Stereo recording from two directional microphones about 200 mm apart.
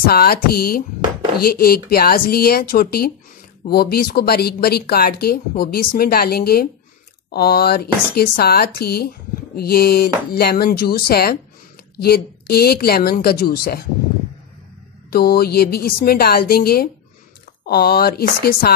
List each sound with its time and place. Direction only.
0.0 s speech: 50° left (ahead or behind)
15.0 s speech: 50° left (ahead or behind)